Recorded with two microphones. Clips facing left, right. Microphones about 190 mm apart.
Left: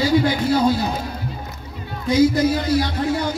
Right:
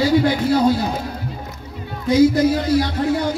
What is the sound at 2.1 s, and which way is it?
Speech, 55° right (ahead or behind).